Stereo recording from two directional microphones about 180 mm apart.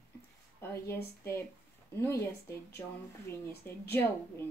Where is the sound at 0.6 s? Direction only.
15° left (ahead or behind).